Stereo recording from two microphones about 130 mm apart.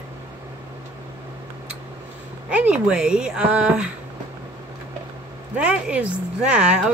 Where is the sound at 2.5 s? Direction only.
10° right (ahead or behind).